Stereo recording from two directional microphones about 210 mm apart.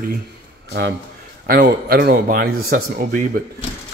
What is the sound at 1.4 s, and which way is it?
A man's voice, 50° right (ahead or behind).